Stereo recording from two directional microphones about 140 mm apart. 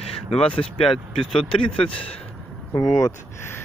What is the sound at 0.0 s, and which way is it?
Speech, 45° left (ahead or behind).